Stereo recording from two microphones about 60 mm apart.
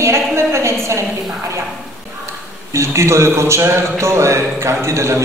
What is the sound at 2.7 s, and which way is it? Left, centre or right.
A woman's voice, right.